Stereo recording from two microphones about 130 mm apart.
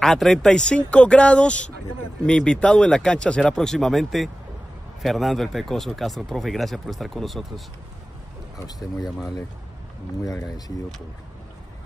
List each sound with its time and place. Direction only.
0.0 s speech: 5° left (ahead or behind)
8.5 s speech: 30° left (ahead or behind)